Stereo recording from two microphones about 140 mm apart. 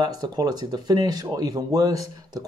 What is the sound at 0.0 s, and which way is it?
Speech, 30° right (ahead or behind).